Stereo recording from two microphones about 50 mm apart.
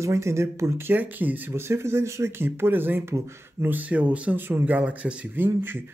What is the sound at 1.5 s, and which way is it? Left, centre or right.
Speech, right.